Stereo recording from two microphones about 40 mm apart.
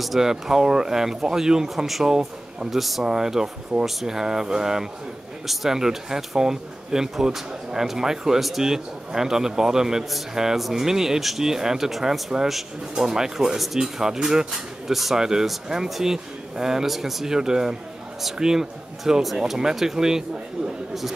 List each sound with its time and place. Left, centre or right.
0.0 s speech: centre
2.7 s speech: centre
3.0 s speech: centre
8.4 s speech: centre